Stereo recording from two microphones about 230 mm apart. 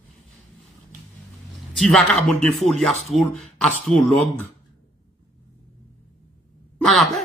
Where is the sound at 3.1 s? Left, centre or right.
Left.